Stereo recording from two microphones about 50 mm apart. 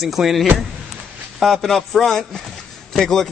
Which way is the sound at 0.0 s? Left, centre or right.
Centre.